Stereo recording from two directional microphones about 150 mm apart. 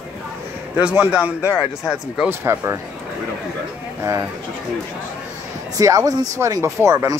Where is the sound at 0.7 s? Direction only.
10° right (ahead or behind).